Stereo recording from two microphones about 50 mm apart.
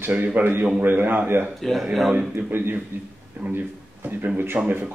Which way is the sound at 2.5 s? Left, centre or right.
Right.